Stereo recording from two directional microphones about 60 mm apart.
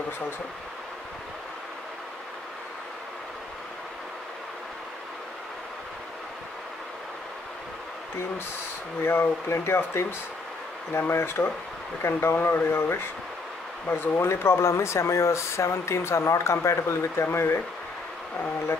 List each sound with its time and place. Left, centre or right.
9.0 s speech: left